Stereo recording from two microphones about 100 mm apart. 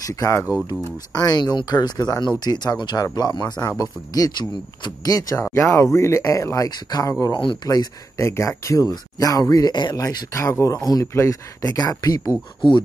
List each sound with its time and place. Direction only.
0.0 s speech: 35° left (ahead or behind)
1.1 s speech: 45° left (ahead or behind)
5.4 s speech: 25° left (ahead or behind)
8.2 s speech: 30° left (ahead or behind); by 10.0 s 45° left (ahead or behind)
10.0 s speech: 35° left (ahead or behind)